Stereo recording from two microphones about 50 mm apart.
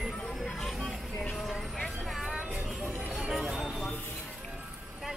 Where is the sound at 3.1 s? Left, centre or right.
Centre.